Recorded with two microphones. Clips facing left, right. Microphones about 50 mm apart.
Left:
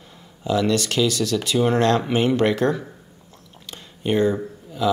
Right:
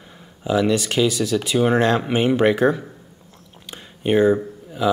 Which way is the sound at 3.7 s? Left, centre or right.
Centre.